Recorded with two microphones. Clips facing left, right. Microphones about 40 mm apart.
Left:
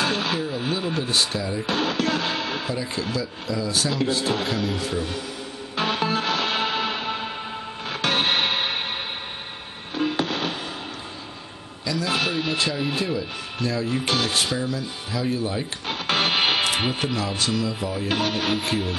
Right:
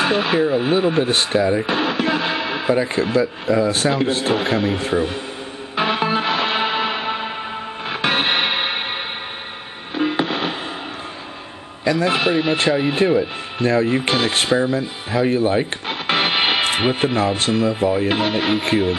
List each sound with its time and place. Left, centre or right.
0.0 s speech: right
1.7 s music: right
2.7 s speech: right
5.8 s music: right
9.9 s music: right
11.8 s a man's voice: right
12.2 s speech: right
15.9 s speech: right